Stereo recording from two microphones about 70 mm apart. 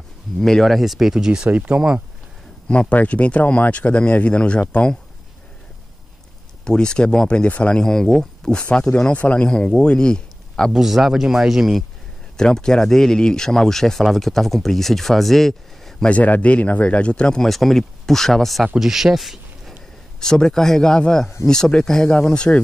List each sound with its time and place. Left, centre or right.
0.4 s speech: centre
2.7 s speech: centre
6.6 s speech: centre
10.7 s speech: centre
12.4 s speech: centre
16.1 s speech: left; by 19.7 s centre
20.2 s speech: centre